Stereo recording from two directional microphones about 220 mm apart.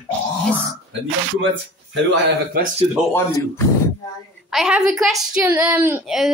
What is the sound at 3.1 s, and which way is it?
Speech, 15° left (ahead or behind).